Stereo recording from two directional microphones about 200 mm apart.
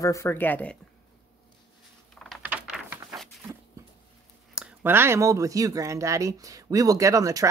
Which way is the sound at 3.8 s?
15° right (ahead or behind).